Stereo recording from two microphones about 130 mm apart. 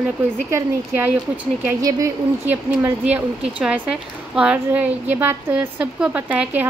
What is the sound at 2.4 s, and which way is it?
Speech, 15° right (ahead or behind).